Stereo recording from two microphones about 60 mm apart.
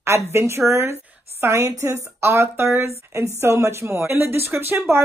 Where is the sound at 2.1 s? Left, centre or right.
Right.